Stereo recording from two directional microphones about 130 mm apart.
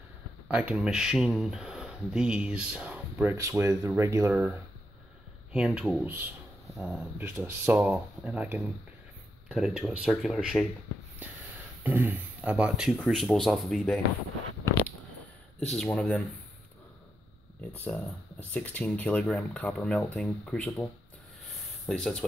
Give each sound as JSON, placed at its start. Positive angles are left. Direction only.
{"t": 0.5, "sound": "speech", "side_deg": -10}
{"t": 3.3, "sound": "speech", "side_deg": -25}
{"t": 4.3, "sound": "speech", "side_deg": -10}
{"t": 7.2, "sound": "speech", "side_deg": -20}
{"t": 11.8, "sound": "speech", "side_deg": -15}
{"t": 15.7, "sound": "speech", "side_deg": 5}
{"t": 17.8, "sound": "speech", "side_deg": 0}